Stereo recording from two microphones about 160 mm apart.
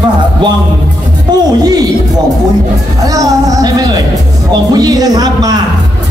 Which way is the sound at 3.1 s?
20° right (ahead or behind).